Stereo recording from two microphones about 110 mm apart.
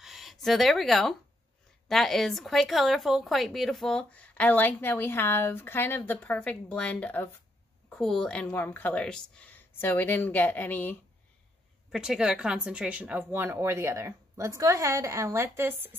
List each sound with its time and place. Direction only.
0.0 s a sound: centre (ahead or behind)
1.9 s speech: centre (ahead or behind)
11.9 s speech: 5° right (ahead or behind)